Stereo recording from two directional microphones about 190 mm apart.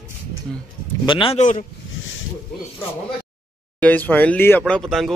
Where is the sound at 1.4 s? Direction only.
40° left (ahead or behind).